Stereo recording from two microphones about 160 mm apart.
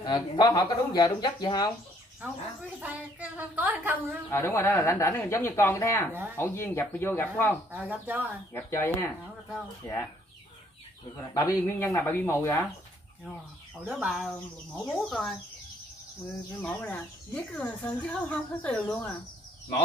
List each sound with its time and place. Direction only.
0.0 s speech: 25° left (ahead or behind)
2.2 s a woman's voice: 10° right (ahead or behind)
4.3 s speech: 15° left (ahead or behind)
7.7 s a woman's voice: 10° right (ahead or behind)
8.5 s speech: 15° left (ahead or behind)
11.5 s speech: 20° left (ahead or behind)
13.7 s speech: 5° right (ahead or behind)
16.5 s speech: 10° left (ahead or behind)